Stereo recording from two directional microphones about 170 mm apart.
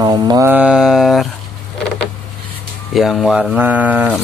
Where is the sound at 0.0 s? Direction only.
25° right (ahead or behind).